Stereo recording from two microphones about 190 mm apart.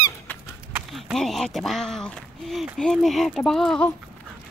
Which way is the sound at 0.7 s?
Centre (ahead or behind).